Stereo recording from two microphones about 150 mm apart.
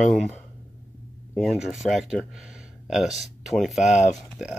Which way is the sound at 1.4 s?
5° right (ahead or behind).